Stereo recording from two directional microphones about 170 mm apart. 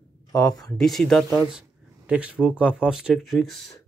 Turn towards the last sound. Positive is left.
turn(degrees=0)  # may be behind; listen again after turning